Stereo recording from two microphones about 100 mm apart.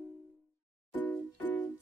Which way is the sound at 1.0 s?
20° left (ahead or behind).